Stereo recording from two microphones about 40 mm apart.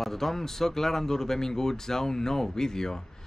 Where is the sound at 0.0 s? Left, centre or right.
Centre.